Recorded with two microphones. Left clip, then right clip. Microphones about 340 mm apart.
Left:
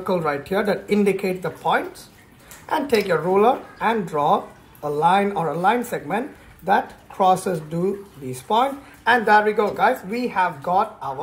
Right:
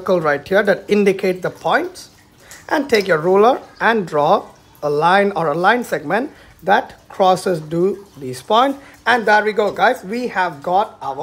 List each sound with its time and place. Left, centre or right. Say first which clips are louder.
0.0 s speech: right 6 dB; centre
2.7 s speech: right 4 dB; centre